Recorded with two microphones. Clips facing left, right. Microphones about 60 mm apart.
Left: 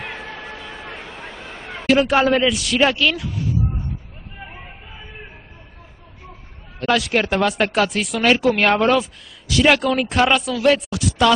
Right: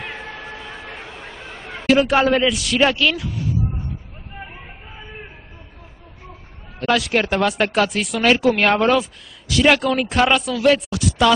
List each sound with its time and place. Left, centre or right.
1.1 s a sound: left
1.5 s chatter: left
1.9 s speech: centre
6.8 s speech: centre